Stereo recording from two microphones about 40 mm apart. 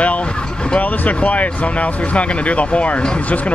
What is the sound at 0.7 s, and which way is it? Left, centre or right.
Speech, left.